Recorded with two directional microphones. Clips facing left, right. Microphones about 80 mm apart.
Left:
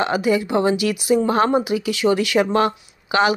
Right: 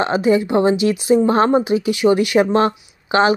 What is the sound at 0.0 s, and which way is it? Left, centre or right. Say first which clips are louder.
A woman's voice: right 3 dB; right.